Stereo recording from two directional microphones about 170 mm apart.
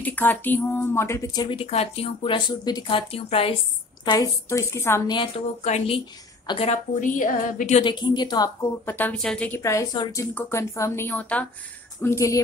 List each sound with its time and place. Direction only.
0.0 s a woman's voice: 10° left (ahead or behind); by 3.5 s 35° left (ahead or behind)
4.0 s a woman's voice: 25° left (ahead or behind)
5.6 s speech: 40° left (ahead or behind)
6.4 s a woman's voice: 30° left (ahead or behind)
7.0 s a sound: 50° left (ahead or behind)
7.8 s a woman's voice: 25° left (ahead or behind)
8.8 s a woman's voice: 10° left (ahead or behind)
9.6 s a woman's voice: 20° left (ahead or behind)